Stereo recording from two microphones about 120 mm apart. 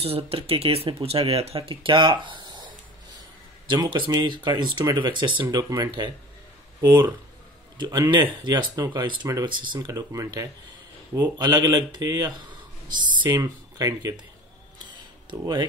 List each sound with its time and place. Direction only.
0.0 s speech: 55° right (ahead or behind); by 2.7 s 40° right (ahead or behind)
3.7 s speech: 40° right (ahead or behind)